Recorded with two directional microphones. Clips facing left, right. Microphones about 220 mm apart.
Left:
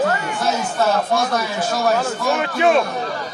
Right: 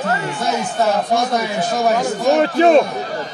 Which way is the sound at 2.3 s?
35° right (ahead or behind).